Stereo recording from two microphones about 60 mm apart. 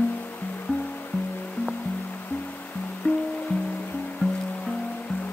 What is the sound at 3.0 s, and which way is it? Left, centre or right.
Music, left.